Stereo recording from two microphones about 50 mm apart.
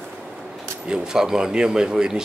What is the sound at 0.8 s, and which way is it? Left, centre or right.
A man's voice, centre.